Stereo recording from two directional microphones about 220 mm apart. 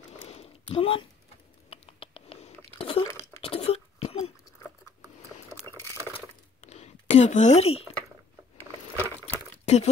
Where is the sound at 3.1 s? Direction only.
15° left (ahead or behind).